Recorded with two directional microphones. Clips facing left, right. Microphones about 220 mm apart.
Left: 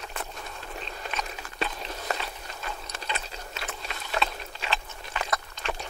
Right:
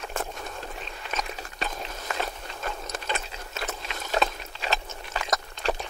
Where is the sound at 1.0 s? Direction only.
45° left (ahead or behind).